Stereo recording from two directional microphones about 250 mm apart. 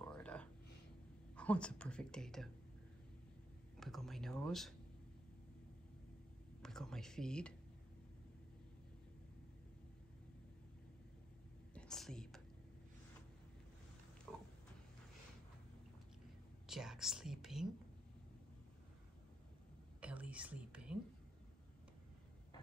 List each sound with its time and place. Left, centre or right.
0.0 s a sound: centre
1.3 s a woman's voice: centre
3.8 s a woman's voice: centre
6.6 s a woman's voice: centre
11.7 s whispering: centre
14.3 s pig: centre
16.6 s speech: centre
20.0 s a woman's voice: centre